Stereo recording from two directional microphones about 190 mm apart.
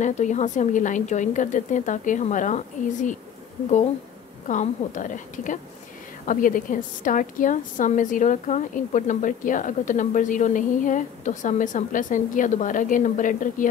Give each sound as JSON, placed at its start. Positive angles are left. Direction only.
{"t": 0.0, "sound": "a woman's voice", "side_deg": 40}
{"t": 4.5, "sound": "a woman's voice", "side_deg": 40}